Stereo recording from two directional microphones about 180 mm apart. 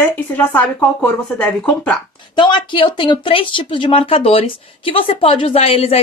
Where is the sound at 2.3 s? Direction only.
25° left (ahead or behind).